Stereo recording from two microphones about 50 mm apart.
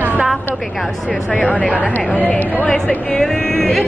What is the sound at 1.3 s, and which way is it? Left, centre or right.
Speech, left.